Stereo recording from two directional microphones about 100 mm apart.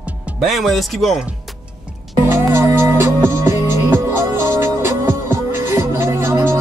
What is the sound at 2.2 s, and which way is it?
Music, 25° right (ahead or behind).